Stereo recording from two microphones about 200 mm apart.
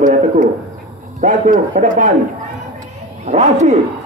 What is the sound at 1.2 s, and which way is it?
Speech, 40° right (ahead or behind).